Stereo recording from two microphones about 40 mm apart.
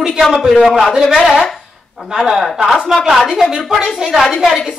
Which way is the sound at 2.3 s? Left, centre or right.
Centre.